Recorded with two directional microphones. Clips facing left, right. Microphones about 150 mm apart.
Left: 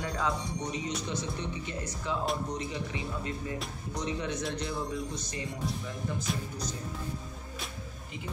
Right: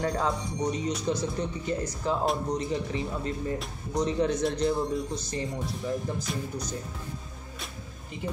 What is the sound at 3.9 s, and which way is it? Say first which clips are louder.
Speech: right 8 dB; 40° right (ahead or behind).